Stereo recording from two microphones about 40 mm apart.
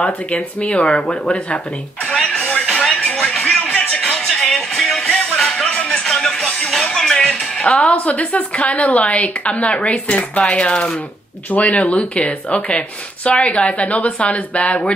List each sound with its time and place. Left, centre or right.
0.3 s speech: left
2.1 s music: left
4.3 s music: centre
5.3 s music: left
7.2 s music: left
7.9 s speech: left
11.9 s speech: left